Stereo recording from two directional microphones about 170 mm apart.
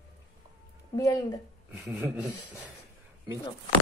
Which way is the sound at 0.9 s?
20° left (ahead or behind).